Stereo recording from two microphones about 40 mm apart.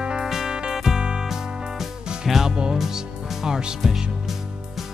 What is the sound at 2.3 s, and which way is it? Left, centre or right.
Music, centre.